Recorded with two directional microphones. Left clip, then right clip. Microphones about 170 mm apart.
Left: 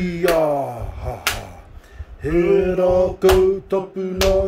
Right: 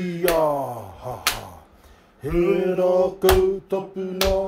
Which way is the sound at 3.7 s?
20° left (ahead or behind).